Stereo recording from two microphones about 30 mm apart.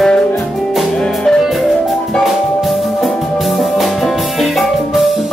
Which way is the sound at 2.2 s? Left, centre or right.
Centre.